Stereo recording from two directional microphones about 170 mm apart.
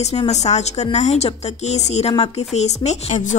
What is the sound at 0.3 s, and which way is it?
Speech, 40° left (ahead or behind).